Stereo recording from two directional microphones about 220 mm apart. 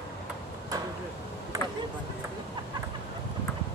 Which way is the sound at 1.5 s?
15° right (ahead or behind).